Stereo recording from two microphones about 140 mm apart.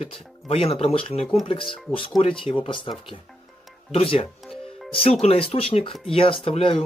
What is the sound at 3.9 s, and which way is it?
Speech, 45° left (ahead or behind).